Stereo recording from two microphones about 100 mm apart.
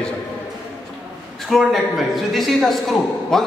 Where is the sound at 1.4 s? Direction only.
Centre (ahead or behind).